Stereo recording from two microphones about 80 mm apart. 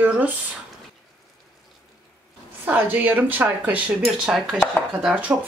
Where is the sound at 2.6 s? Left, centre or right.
Right.